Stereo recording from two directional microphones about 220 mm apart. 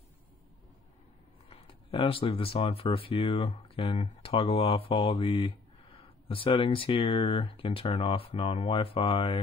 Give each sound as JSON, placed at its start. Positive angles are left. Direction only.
{"t": 1.5, "sound": "speech", "side_deg": 25}